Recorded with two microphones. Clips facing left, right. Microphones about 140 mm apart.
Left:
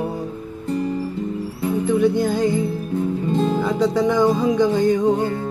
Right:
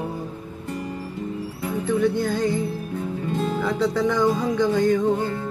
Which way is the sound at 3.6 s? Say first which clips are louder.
Left 3 dB; 15° left (ahead or behind).